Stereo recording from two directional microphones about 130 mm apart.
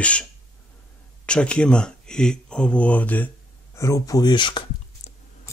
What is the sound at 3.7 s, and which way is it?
Speech, 25° left (ahead or behind).